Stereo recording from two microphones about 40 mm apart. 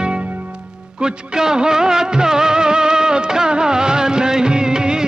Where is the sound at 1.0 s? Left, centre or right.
Centre.